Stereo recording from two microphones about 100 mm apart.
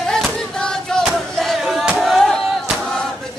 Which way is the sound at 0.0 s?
5° left (ahead or behind).